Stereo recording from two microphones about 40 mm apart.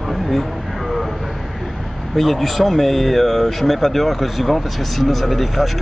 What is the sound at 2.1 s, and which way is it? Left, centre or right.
Speech, centre.